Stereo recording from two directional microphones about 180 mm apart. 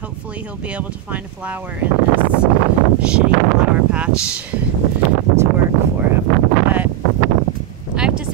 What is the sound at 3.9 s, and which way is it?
Speech, 5° right (ahead or behind).